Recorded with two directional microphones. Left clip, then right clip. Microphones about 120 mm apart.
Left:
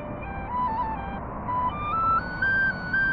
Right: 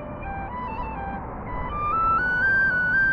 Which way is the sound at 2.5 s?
40° right (ahead or behind).